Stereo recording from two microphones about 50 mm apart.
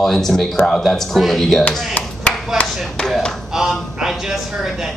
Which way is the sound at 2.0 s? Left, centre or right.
Left.